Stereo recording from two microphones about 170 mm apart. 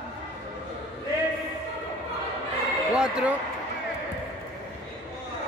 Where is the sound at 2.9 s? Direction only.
5° right (ahead or behind).